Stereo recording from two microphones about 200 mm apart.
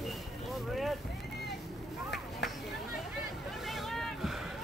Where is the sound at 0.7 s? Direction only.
Centre (ahead or behind).